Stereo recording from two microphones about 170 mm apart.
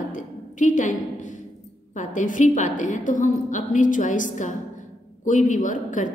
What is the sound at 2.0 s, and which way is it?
A woman's voice, 50° left (ahead or behind).